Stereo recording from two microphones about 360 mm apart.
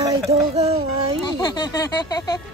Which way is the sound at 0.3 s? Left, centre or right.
Centre.